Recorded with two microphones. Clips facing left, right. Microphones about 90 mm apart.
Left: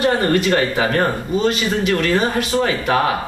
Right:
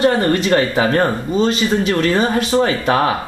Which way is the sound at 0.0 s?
25° right (ahead or behind).